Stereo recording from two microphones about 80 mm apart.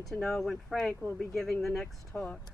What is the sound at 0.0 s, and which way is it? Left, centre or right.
Speech, centre.